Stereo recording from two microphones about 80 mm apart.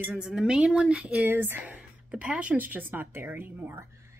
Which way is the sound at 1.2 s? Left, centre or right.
Right.